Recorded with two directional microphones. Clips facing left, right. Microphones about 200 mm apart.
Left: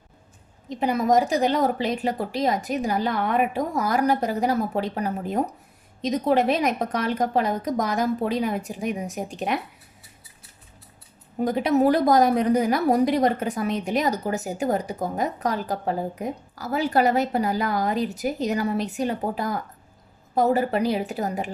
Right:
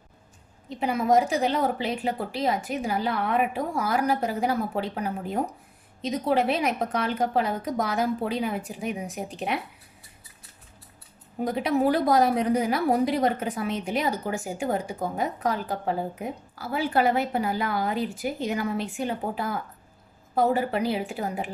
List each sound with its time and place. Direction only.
0.7 s a woman's voice: 40° left (ahead or behind)
11.4 s a woman's voice: 45° left (ahead or behind)